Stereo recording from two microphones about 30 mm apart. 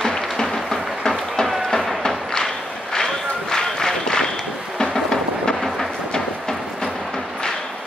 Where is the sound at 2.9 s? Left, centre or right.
Left.